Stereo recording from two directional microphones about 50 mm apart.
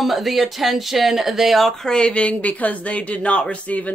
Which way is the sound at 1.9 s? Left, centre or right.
Left.